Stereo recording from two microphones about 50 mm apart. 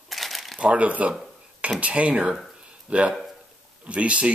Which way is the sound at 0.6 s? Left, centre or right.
Right.